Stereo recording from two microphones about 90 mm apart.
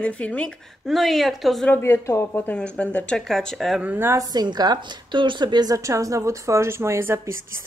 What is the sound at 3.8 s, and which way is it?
Speech, 15° right (ahead or behind).